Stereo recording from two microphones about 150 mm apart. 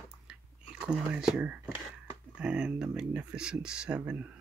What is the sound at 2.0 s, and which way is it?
Speech, 5° right (ahead or behind).